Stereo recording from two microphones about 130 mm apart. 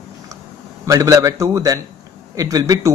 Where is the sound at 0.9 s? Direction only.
25° right (ahead or behind).